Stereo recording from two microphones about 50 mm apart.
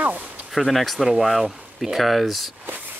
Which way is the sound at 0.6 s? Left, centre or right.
Centre.